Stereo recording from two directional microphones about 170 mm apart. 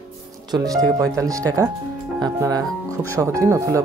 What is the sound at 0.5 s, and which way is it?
Speech, 20° right (ahead or behind).